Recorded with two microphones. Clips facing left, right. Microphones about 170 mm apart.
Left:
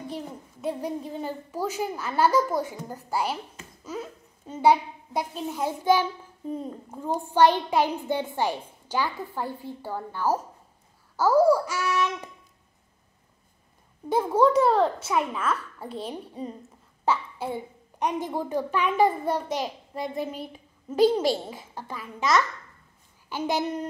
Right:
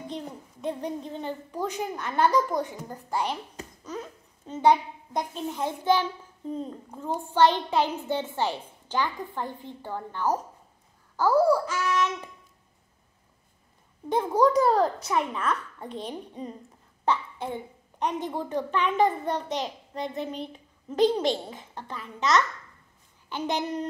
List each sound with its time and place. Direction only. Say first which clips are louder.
0.1 s a woman's voice: left 1 dB; 5° left (ahead or behind)
14.0 s a child's voice: left 1 dB; 5° left (ahead or behind)